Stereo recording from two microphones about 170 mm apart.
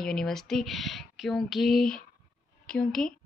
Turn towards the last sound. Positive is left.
turn(degrees=0)  # may be behind; listen again after turning